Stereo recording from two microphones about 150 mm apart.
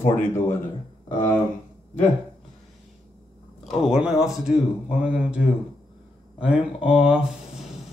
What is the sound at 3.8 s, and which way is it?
Speech, 5° right (ahead or behind).